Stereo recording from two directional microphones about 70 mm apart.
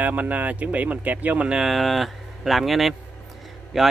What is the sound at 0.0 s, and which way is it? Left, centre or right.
Speech, right.